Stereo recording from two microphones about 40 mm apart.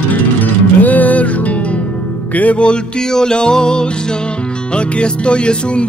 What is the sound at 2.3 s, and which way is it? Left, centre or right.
Speech, left.